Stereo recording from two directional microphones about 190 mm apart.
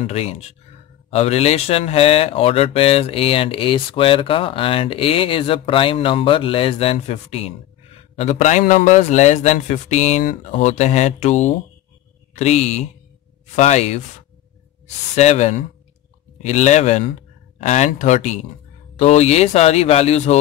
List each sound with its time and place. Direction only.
0.0 s speech: 35° left (ahead or behind)
15.1 s speech: 35° left (ahead or behind)